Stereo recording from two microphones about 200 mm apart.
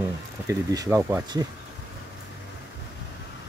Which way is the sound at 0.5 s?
15° right (ahead or behind).